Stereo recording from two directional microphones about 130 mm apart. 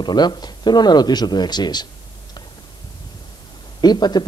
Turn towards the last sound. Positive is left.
turn(degrees=35)  # may be behind; listen again after turning